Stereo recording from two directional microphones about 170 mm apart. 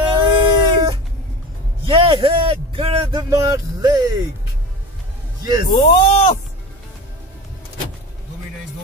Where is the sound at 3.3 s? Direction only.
20° right (ahead or behind).